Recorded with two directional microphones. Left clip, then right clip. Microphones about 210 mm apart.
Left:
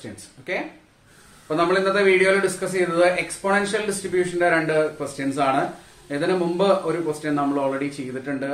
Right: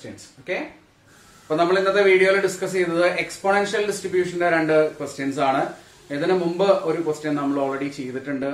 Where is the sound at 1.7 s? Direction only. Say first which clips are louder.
Right 1 dB; 10° left (ahead or behind).